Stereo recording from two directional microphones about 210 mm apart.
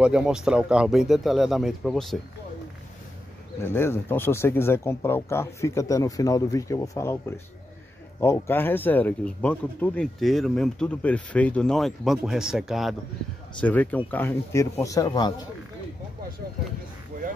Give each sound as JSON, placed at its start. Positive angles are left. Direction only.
{"t": 0.0, "sound": "speech", "side_deg": -5}
{"t": 3.6, "sound": "speech", "side_deg": 10}
{"t": 17.1, "sound": "speech", "side_deg": -45}